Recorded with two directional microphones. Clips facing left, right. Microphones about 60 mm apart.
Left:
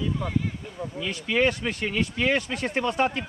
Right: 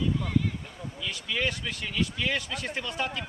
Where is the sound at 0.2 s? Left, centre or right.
Centre.